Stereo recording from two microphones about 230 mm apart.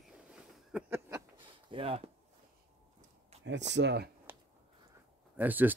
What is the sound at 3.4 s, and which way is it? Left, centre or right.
Speech, right.